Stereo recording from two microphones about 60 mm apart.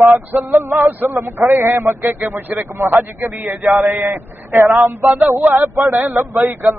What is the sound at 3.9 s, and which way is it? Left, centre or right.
A man's voice, right.